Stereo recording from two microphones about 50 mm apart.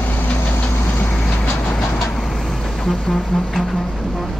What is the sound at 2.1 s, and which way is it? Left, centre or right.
Vehicle, centre.